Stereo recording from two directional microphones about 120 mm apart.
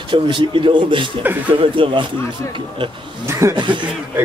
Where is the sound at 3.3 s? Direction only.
25° right (ahead or behind).